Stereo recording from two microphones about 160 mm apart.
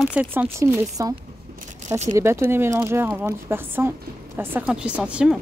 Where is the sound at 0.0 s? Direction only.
10° right (ahead or behind).